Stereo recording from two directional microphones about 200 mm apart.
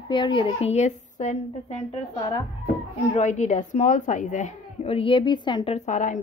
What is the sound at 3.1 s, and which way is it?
A woman's voice, 35° left (ahead or behind).